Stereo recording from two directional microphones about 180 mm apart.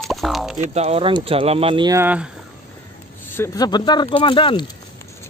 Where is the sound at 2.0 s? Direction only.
10° right (ahead or behind).